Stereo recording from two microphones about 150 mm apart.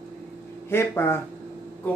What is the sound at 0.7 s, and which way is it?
Speech, 15° left (ahead or behind).